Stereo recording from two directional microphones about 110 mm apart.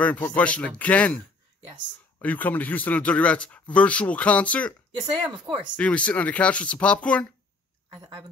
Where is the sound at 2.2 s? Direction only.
15° left (ahead or behind).